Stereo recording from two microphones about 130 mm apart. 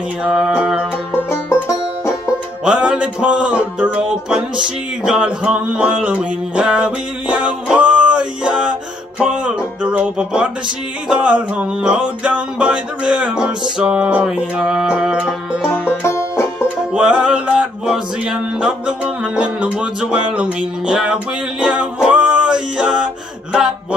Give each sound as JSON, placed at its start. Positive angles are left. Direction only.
{"t": 0.2, "sound": "music", "side_deg": -5}
{"t": 1.3, "sound": "music", "side_deg": 20}
{"t": 2.6, "sound": "music", "side_deg": -5}
{"t": 16.0, "sound": "music", "side_deg": 20}
{"t": 16.9, "sound": "music", "side_deg": -5}